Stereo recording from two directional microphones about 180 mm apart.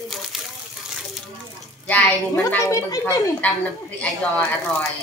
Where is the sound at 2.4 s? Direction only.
20° left (ahead or behind).